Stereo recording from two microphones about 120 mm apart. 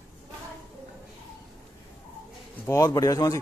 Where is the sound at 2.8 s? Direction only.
30° left (ahead or behind).